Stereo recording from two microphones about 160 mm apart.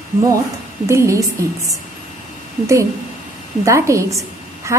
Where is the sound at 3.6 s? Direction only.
20° right (ahead or behind).